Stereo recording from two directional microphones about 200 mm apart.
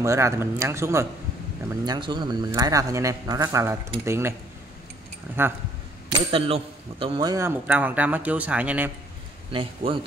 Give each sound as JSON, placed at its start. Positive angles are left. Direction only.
{"t": 0.0, "sound": "a man's voice", "side_deg": -15}
{"t": 5.4, "sound": "a man's voice", "side_deg": -10}
{"t": 6.3, "sound": "a man's voice", "side_deg": -30}
{"t": 9.5, "sound": "speech", "side_deg": -25}